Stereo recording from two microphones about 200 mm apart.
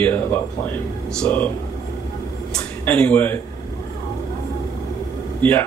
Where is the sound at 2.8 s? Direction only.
10° left (ahead or behind).